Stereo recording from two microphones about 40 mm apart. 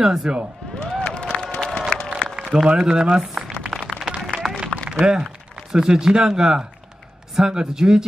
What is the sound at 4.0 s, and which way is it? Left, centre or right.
Run, centre.